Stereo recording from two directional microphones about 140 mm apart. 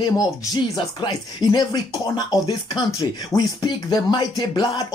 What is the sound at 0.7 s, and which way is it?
Speech, 35° left (ahead or behind).